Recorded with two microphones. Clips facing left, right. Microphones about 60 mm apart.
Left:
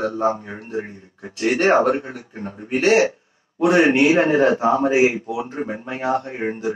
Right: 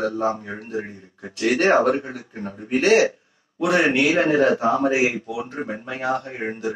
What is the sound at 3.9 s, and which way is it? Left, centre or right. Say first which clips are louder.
A man's voice: left 2 dB; centre.